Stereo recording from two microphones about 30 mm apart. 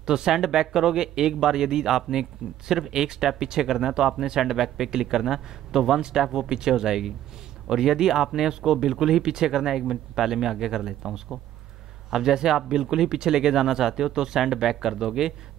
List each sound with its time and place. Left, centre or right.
0.0 s speech: right
5.9 s speech: right
9.2 s speech: right